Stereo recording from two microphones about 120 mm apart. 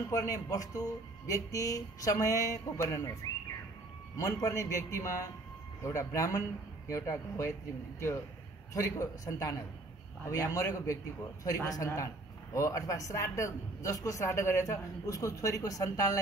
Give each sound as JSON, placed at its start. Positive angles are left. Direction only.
{"t": 0.1, "sound": "a man's voice", "side_deg": 25}
{"t": 3.2, "sound": "bird", "side_deg": 30}
{"t": 4.2, "sound": "a man's voice", "side_deg": 25}
{"t": 8.7, "sound": "a man's voice", "side_deg": 30}